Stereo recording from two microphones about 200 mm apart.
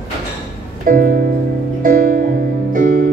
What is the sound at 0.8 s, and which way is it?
Music, 45° right (ahead or behind).